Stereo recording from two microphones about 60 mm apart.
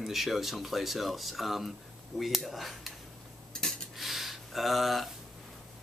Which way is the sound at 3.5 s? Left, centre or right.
Centre.